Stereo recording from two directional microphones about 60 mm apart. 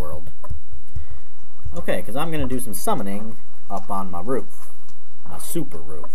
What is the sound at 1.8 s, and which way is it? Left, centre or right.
Speech, centre.